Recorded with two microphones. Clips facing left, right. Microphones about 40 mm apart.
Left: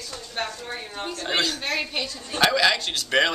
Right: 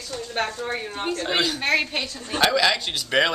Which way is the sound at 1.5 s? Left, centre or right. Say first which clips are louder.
Right 5 dB; right.